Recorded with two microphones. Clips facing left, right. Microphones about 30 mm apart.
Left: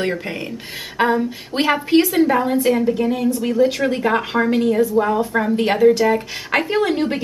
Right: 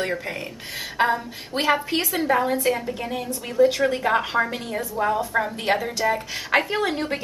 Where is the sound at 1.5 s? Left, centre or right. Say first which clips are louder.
Left 5 dB; left.